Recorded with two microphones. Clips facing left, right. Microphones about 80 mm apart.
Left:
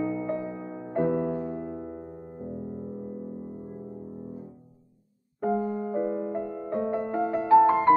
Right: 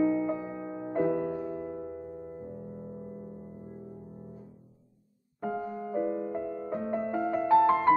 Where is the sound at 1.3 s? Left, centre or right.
Centre.